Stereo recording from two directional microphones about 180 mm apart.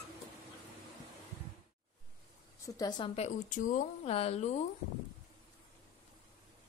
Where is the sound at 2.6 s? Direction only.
20° left (ahead or behind).